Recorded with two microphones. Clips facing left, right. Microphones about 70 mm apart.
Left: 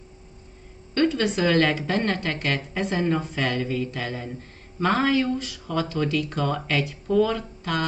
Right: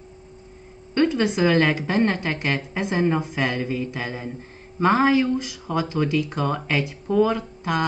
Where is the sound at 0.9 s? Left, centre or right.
Right.